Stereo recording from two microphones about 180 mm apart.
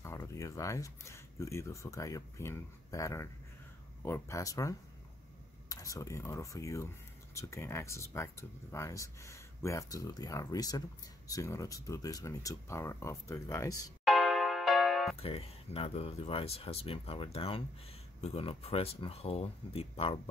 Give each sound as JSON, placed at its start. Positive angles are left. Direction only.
{"t": 0.0, "sound": "speech", "side_deg": 15}
{"t": 14.0, "sound": "music", "side_deg": 0}
{"t": 15.1, "sound": "speech", "side_deg": 35}